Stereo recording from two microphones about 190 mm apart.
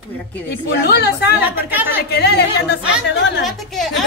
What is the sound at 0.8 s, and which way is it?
Speech, 60° left (ahead or behind).